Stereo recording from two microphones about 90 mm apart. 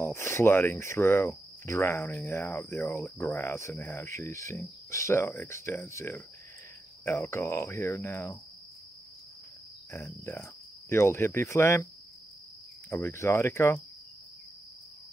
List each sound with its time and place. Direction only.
0.0 s cricket: 30° left (ahead or behind)
9.8 s speech: 30° left (ahead or behind)
13.0 s cricket: 30° left (ahead or behind)